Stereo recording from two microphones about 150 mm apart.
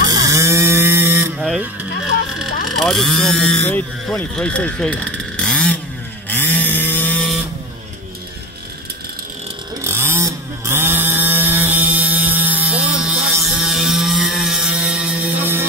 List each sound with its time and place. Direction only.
0.1 s a sound: 20° right (ahead or behind)
2.3 s speech: centre (ahead or behind)
6.2 s chainsaw: 10° left (ahead or behind)
9.8 s chainsaw: 15° right (ahead or behind)